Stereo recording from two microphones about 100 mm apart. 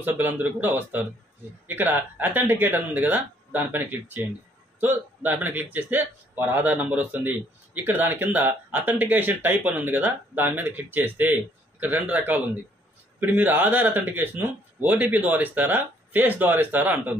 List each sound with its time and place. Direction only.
0.0 s a man's voice: 20° right (ahead or behind)